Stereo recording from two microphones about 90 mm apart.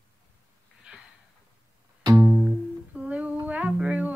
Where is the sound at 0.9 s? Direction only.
10° right (ahead or behind).